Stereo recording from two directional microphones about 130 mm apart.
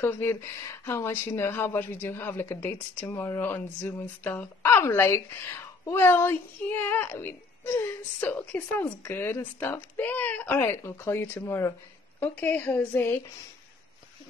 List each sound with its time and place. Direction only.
0.0 s speech: 15° left (ahead or behind)